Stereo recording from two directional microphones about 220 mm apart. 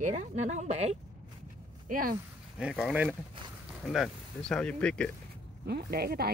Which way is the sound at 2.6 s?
5° right (ahead or behind).